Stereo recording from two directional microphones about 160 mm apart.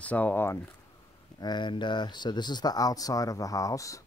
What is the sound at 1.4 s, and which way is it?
Speech, 30° left (ahead or behind).